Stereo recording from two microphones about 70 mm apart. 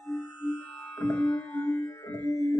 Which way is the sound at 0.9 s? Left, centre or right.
Left.